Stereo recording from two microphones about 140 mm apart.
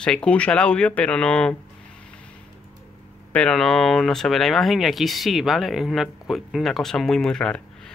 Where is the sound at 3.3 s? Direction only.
5° left (ahead or behind).